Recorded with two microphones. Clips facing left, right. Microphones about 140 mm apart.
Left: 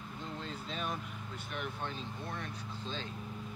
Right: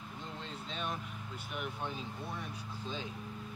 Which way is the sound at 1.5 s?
10° right (ahead or behind).